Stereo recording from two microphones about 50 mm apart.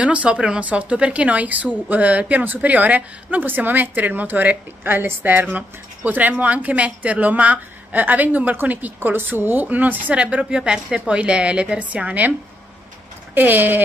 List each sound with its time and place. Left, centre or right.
0.0 s a woman's voice: right